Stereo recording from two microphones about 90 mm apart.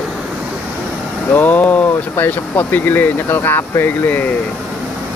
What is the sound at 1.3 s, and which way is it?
Speech, 20° left (ahead or behind).